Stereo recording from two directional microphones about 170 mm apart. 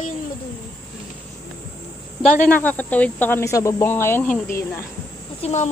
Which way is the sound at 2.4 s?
10° left (ahead or behind).